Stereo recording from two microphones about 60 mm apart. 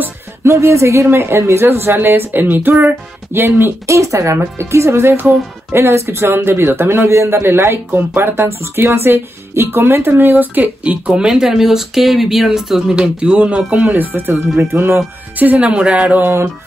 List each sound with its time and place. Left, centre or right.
0.4 s speech: right
3.8 s speech: right
14.1 s speech: right
15.3 s speech: right
16.2 s speech: right